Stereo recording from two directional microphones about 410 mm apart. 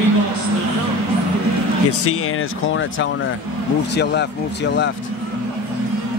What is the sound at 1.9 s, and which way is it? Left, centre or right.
Speech, left.